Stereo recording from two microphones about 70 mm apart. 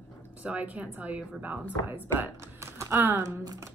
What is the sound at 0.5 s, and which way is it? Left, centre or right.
A woman's voice, right.